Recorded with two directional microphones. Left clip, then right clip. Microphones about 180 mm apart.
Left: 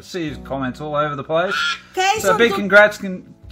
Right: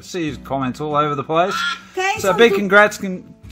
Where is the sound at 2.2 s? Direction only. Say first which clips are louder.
Right 2 dB; 35° right (ahead or behind).